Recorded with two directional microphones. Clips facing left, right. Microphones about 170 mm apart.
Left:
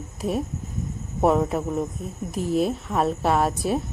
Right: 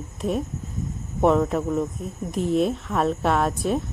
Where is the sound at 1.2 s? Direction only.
5° left (ahead or behind).